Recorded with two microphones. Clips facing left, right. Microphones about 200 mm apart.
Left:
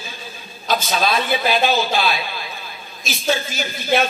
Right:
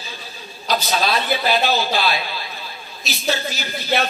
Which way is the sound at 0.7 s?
50° left (ahead or behind).